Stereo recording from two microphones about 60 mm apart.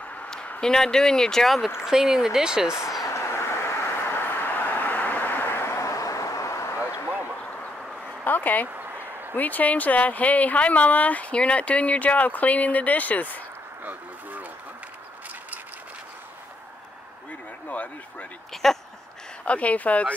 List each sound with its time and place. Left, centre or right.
0.6 s speech: centre
1.9 s speech: centre
3.1 s vehicle: left
4.3 s vehicle: left
5.8 s a sound: left
8.2 s a sound: left
8.6 s a sound: right
9.3 s speech: left
18.5 s speech: centre
19.4 s speech: left